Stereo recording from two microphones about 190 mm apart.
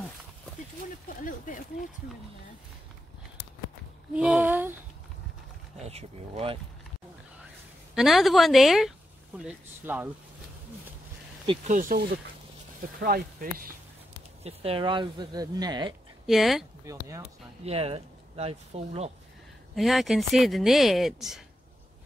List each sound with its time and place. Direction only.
1.0 s speech: 45° left (ahead or behind)
4.1 s speech: 5° right (ahead or behind)
5.8 s speech: 35° right (ahead or behind)
7.9 s speech: centre (ahead or behind)
11.6 s speech: 45° right (ahead or behind)
14.4 s speech: 30° right (ahead or behind)
16.3 s speech: centre (ahead or behind)
16.8 s speech: 15° right (ahead or behind)
17.6 s speech: 30° right (ahead or behind)
19.7 s speech: centre (ahead or behind)